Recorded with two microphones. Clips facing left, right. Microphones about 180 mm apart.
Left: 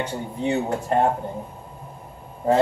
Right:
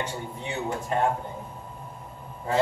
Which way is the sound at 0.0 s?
60° left (ahead or behind).